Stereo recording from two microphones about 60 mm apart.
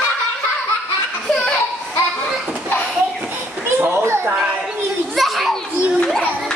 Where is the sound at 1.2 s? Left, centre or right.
Centre.